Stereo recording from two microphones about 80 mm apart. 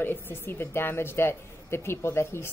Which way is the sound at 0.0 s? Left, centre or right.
Left.